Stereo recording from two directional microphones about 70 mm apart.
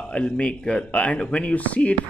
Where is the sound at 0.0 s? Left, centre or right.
Centre.